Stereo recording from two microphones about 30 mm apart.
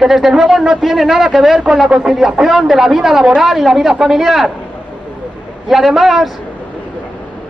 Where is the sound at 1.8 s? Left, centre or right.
Right.